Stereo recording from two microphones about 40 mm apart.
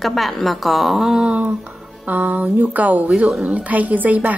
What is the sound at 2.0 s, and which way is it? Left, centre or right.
A woman's voice, right.